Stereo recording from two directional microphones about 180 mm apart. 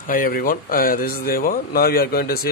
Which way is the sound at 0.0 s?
50° left (ahead or behind).